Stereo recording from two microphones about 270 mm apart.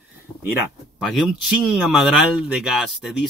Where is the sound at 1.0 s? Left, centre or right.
Centre.